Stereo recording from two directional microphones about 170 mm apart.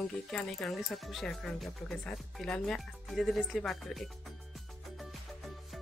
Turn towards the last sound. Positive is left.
turn(degrees=0)  # may be behind; listen again after turning